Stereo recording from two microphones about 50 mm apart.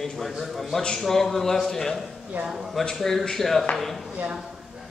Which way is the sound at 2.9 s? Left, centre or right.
Centre.